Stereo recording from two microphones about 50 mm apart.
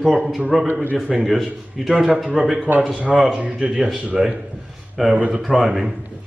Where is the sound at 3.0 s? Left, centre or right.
Right.